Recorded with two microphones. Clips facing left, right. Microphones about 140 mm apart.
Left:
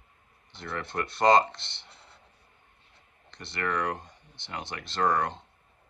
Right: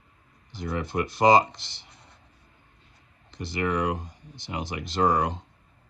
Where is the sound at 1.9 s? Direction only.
30° left (ahead or behind).